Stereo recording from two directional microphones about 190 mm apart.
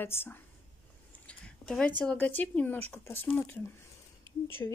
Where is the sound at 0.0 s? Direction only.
10° left (ahead or behind).